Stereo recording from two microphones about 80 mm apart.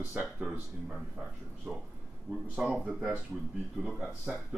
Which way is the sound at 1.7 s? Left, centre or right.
Centre.